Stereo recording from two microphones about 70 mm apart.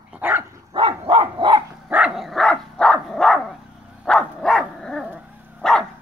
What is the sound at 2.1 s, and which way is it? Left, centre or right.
Dog, centre.